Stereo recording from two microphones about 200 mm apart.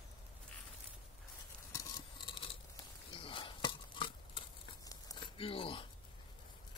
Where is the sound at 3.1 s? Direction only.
25° left (ahead or behind).